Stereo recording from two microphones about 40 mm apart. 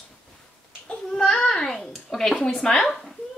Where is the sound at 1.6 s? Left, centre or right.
Centre.